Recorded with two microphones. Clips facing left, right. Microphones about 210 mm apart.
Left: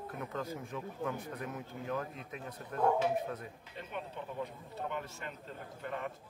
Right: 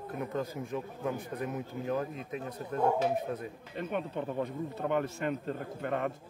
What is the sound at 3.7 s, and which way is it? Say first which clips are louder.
A man's voice: right 9 dB; 65° right (ahead or behind).